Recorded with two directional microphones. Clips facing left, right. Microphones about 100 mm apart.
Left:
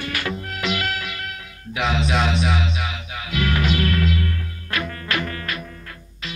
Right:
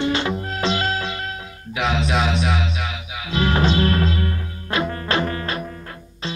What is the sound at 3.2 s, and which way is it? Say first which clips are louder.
Music: right 3 dB; 30° right (ahead or behind).